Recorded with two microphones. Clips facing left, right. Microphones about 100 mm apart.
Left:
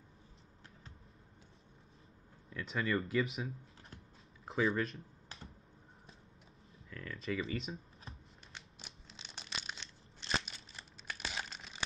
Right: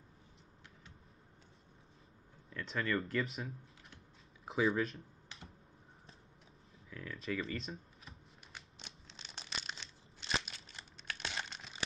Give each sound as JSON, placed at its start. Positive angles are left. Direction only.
{"t": 2.5, "sound": "speech", "side_deg": 5}
{"t": 4.5, "sound": "speech", "side_deg": 0}
{"t": 6.9, "sound": "speech", "side_deg": -5}
{"t": 8.5, "sound": "crunch", "side_deg": 0}